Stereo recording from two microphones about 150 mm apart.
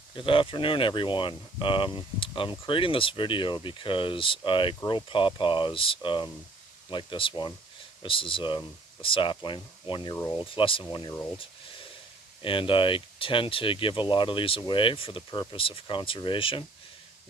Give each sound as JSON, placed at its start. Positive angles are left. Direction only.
{"t": 0.1, "sound": "speech", "side_deg": 35}
{"t": 12.4, "sound": "speech", "side_deg": 35}